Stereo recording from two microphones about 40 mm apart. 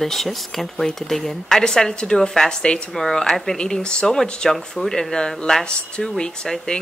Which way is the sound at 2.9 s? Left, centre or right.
Centre.